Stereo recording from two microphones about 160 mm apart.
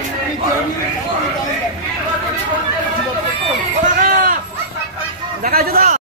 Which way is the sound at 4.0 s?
60° right (ahead or behind).